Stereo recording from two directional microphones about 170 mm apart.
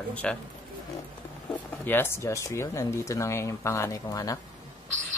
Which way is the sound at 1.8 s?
15° left (ahead or behind).